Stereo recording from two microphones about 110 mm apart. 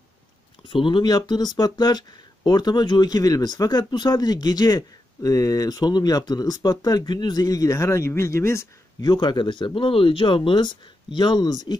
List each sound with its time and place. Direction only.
0.7 s speech: 50° left (ahead or behind); by 8.6 s 25° left (ahead or behind)
9.0 s speech: 40° left (ahead or behind)